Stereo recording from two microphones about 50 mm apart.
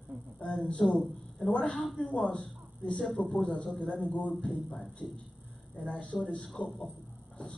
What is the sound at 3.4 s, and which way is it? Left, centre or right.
Speech, left.